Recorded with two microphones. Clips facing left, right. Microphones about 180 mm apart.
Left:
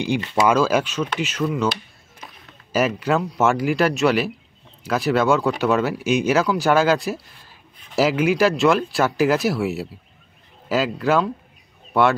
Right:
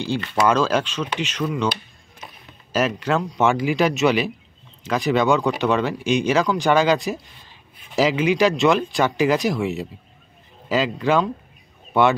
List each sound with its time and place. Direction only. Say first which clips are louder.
0.0 s speech: left 1 dB; 15° left (ahead or behind); by 12.2 s centre (ahead or behind)